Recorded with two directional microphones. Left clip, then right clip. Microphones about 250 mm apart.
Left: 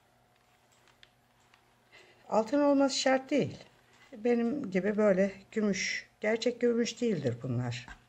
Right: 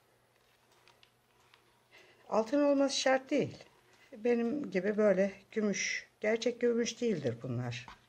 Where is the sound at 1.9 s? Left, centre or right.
Centre.